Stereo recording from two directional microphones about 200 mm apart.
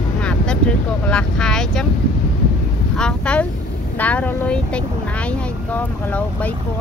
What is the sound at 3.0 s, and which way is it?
Speech, 5° left (ahead or behind).